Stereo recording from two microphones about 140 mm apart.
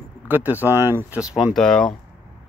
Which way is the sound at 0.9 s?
15° right (ahead or behind).